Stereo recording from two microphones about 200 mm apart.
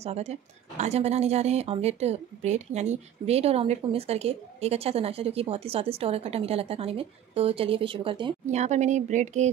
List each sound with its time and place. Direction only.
0.0 s speech: 30° right (ahead or behind)